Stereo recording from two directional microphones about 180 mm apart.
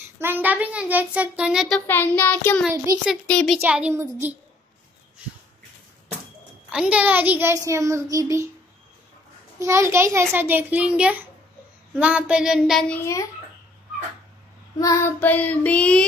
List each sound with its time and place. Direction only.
0.2 s a child's voice: 10° right (ahead or behind)
1.9 s child singing: 10° left (ahead or behind)
3.1 s speech: 5° left (ahead or behind); by 4.4 s 10° right (ahead or behind)
6.7 s a child's voice: 5° right (ahead or behind)
9.6 s a child's voice: 15° right (ahead or behind); by 13.2 s 10° left (ahead or behind)
14.8 s child singing: 20° left (ahead or behind)